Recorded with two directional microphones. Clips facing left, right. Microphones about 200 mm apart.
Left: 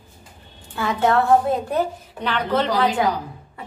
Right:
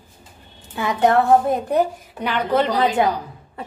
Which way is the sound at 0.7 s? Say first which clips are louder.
Right 2 dB; 15° right (ahead or behind).